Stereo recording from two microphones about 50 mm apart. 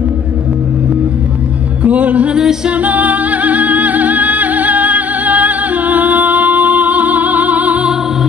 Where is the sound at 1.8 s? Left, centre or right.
Right.